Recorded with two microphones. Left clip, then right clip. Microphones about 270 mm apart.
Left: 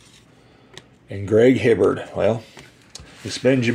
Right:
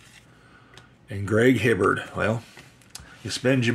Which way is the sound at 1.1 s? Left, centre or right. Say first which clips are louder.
Left 5 dB; centre.